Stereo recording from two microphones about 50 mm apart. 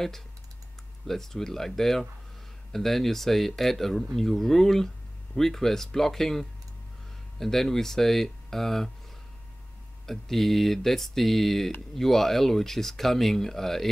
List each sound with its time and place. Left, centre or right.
1.0 s speech: centre
10.0 s speech: centre